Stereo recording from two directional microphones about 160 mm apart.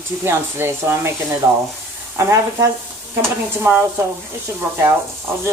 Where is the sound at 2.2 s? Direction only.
15° right (ahead or behind).